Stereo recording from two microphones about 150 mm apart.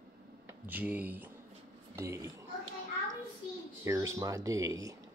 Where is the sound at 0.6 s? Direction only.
10° right (ahead or behind).